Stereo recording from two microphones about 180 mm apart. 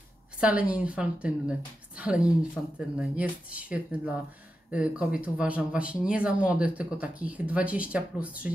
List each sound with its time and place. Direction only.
0.4 s speech: 5° right (ahead or behind)